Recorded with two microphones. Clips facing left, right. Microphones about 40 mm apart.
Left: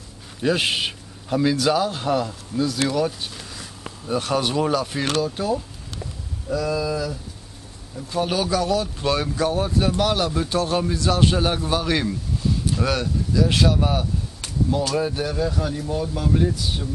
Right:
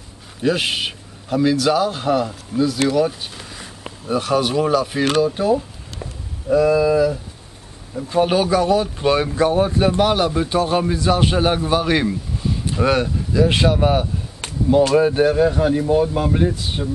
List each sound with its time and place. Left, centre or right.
0.4 s a man's voice: centre; by 16.9 s right